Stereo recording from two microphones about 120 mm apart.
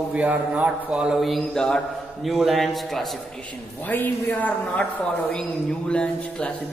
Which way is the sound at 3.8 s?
15° left (ahead or behind).